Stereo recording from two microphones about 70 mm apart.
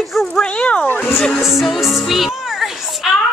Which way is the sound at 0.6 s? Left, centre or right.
Centre.